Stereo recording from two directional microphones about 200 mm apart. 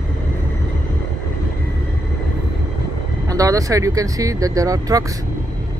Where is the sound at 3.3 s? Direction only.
15° right (ahead or behind).